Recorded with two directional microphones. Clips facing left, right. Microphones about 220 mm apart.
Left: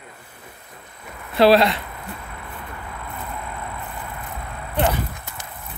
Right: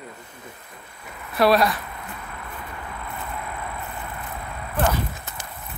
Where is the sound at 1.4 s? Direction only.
25° left (ahead or behind).